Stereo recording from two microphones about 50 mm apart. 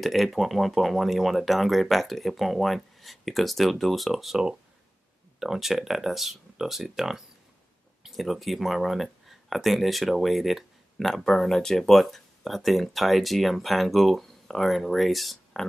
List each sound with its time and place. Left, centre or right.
0.0 s speech: centre